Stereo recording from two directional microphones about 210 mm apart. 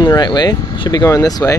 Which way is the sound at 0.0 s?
20° left (ahead or behind).